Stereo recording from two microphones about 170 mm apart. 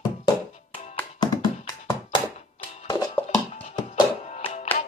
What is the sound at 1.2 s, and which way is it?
Music, 25° left (ahead or behind).